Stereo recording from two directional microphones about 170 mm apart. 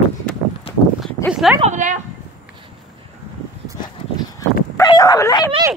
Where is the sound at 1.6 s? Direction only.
45° right (ahead or behind).